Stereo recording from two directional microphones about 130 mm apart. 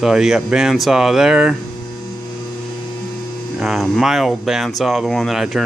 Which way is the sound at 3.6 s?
Centre (ahead or behind).